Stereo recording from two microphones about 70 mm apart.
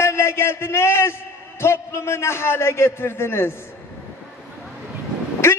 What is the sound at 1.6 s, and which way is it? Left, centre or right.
A man's voice, left.